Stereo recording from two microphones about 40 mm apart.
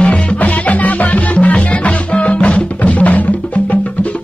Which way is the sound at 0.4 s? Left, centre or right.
Left.